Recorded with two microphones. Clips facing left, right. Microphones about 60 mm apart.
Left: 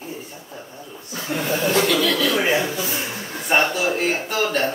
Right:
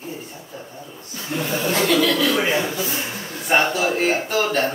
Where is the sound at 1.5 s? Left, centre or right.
Left.